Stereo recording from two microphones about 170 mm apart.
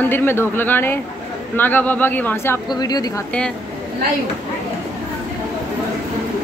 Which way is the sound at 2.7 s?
20° left (ahead or behind).